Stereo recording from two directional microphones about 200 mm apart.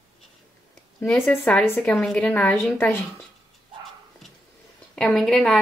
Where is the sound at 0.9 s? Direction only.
10° left (ahead or behind).